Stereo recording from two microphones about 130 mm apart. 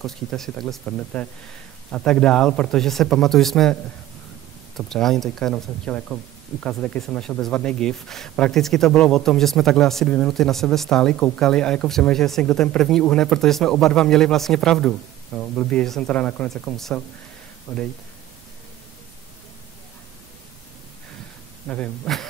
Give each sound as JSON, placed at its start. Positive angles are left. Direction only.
{"t": 0.0, "sound": "speech", "side_deg": 5}
{"t": 4.7, "sound": "speech", "side_deg": 5}
{"t": 17.7, "sound": "speech", "side_deg": 25}
{"t": 21.6, "sound": "speech", "side_deg": 10}